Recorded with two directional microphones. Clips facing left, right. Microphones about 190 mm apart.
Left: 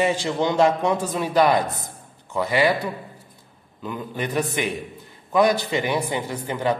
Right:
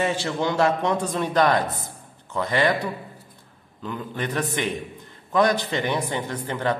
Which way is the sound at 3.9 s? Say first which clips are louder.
Left 1 dB; 10° left (ahead or behind).